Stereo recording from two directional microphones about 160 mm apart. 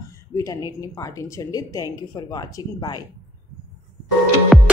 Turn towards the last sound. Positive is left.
turn(degrees=0)  # may be behind; listen again after turning